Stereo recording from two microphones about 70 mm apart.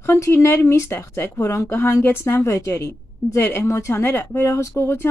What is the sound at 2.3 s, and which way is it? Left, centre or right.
Speech, left.